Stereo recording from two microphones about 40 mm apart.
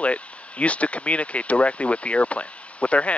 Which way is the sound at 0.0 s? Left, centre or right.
Left.